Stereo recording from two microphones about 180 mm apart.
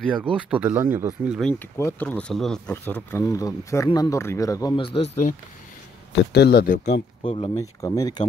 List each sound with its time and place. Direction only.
0.1 s speech: 5° right (ahead or behind)
1.4 s speech: 15° left (ahead or behind); by 5.1 s 30° left (ahead or behind)
6.3 s speech: 65° left (ahead or behind)
6.8 s speech: 35° left (ahead or behind)
7.8 s speech: 20° left (ahead or behind)